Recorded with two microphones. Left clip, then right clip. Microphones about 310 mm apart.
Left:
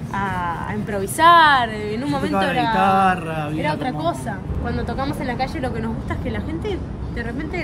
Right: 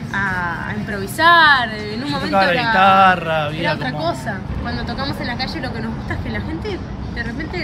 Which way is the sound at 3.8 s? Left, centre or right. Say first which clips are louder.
Right 1 dB; centre.